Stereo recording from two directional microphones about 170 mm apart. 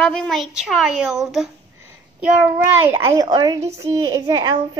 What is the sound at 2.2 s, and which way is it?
A child's voice, 15° right (ahead or behind).